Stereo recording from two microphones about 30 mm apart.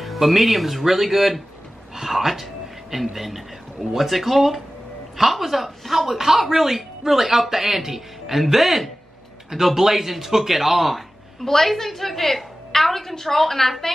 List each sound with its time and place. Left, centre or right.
0.0 s speech: centre
11.4 s a woman's voice: centre